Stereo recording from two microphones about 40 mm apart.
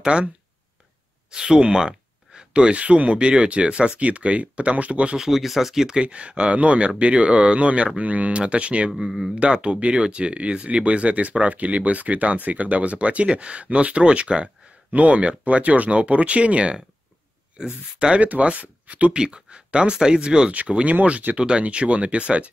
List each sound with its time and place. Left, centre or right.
0.0 s speech: right
1.3 s speech: centre; by 5.1 s right
5.1 s speech: centre
5.9 s speech: right
18.2 s speech: right
20.8 s speech: right
21.4 s speech: right